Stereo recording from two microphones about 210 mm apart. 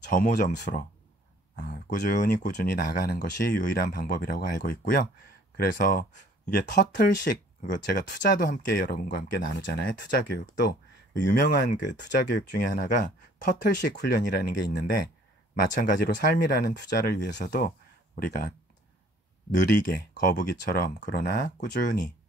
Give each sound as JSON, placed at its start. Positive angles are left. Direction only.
{"t": 0.1, "sound": "speech", "side_deg": 45}
{"t": 15.8, "sound": "speech", "side_deg": 45}
{"t": 19.5, "sound": "speech", "side_deg": 40}